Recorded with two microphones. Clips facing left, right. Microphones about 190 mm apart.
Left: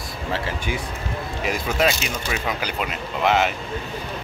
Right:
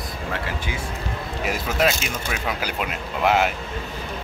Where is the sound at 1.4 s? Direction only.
Centre (ahead or behind).